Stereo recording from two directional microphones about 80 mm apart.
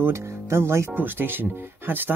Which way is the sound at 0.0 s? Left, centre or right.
Right.